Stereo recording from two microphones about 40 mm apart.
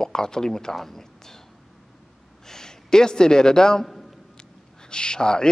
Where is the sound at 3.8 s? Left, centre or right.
Centre.